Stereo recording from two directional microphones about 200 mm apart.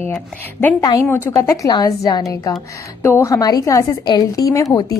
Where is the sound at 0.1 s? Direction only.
10° left (ahead or behind).